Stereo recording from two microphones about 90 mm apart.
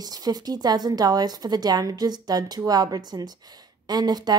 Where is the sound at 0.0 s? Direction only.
45° right (ahead or behind).